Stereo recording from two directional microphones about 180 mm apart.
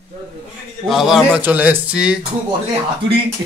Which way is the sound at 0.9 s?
Centre (ahead or behind).